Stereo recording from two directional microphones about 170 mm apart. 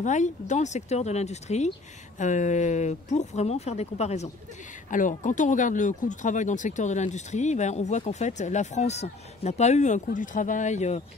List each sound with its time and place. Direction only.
0.0 s speech: 45° left (ahead or behind)